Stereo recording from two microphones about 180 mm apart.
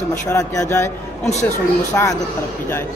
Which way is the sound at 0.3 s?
15° left (ahead or behind).